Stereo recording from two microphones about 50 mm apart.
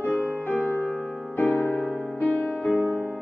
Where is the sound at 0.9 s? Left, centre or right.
Centre.